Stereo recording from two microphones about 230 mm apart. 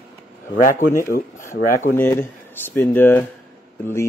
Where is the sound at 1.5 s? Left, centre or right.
Left.